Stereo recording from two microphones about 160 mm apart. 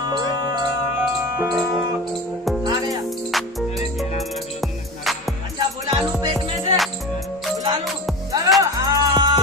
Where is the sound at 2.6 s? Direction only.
25° right (ahead or behind).